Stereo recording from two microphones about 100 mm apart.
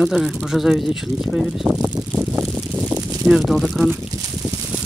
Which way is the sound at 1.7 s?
5° right (ahead or behind).